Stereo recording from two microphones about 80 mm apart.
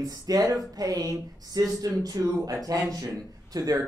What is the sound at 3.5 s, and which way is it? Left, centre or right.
Speech, right.